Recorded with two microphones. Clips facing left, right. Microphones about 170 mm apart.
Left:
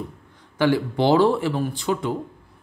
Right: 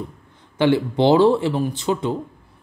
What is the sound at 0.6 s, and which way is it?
Speech, 25° right (ahead or behind).